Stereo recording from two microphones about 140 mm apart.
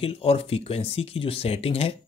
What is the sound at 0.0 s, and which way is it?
Speech, 45° left (ahead or behind).